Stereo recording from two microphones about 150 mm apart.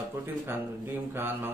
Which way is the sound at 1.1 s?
15° right (ahead or behind).